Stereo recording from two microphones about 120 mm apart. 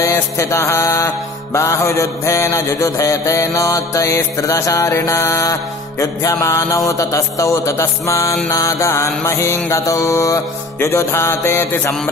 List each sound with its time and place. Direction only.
0.4 s mantra: 25° left (ahead or behind)